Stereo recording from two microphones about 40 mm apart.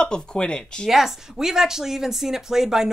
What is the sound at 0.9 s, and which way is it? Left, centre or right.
Speech, centre.